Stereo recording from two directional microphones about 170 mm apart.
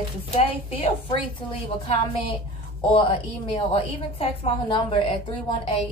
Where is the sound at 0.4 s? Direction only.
35° left (ahead or behind).